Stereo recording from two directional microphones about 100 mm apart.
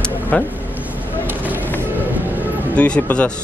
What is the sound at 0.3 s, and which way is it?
Speech, 15° left (ahead or behind).